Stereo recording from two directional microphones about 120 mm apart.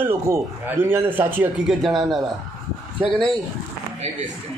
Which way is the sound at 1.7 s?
Centre (ahead or behind).